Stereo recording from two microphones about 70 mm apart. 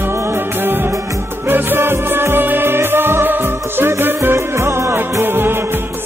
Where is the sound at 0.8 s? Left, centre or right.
Right.